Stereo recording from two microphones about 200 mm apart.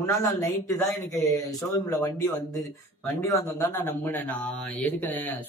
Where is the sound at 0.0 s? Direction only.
15° left (ahead or behind).